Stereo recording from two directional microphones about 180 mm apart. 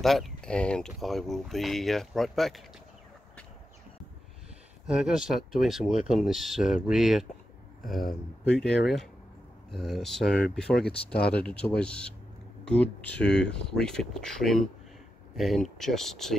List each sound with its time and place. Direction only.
0.0 s speech: centre (ahead or behind)
4.8 s speech: 5° right (ahead or behind)